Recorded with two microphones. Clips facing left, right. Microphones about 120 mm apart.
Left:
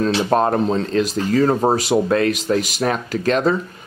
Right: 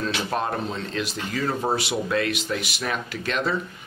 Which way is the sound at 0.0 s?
40° left (ahead or behind).